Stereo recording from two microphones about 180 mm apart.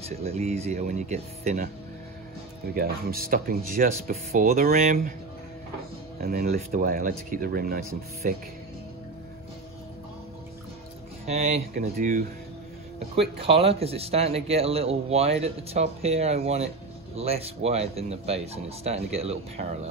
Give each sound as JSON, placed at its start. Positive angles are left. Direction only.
{"t": 0.2, "sound": "speech", "side_deg": -35}
{"t": 2.7, "sound": "speech", "side_deg": -55}
{"t": 6.5, "sound": "speech", "side_deg": -50}
{"t": 11.2, "sound": "speech", "side_deg": -35}
{"t": 11.8, "sound": "speech", "side_deg": -45}
{"t": 13.1, "sound": "speech", "side_deg": -30}